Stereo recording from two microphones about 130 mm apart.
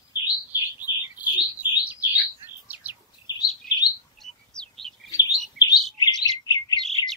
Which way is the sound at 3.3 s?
30° left (ahead or behind).